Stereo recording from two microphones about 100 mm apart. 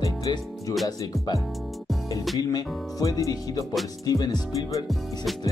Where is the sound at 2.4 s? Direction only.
40° left (ahead or behind).